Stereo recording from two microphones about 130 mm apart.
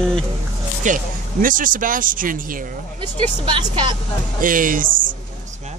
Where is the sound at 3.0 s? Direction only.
40° right (ahead or behind).